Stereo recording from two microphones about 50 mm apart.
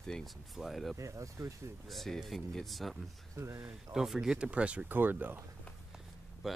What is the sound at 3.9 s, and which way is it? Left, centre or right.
Speech, centre.